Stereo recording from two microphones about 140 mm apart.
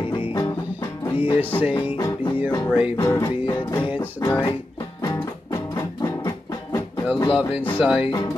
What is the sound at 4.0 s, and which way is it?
Music, 15° left (ahead or behind).